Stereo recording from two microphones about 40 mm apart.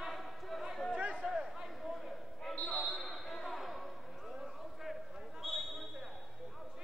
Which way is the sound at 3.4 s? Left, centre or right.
Centre.